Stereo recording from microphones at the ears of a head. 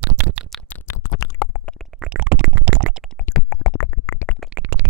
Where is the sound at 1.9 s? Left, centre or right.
Right.